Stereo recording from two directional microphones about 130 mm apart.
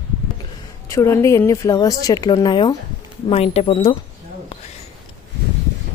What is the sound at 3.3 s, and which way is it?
Speech, 50° left (ahead or behind).